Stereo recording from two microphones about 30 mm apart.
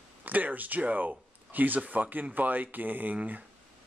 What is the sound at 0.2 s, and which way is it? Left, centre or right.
Speech, right.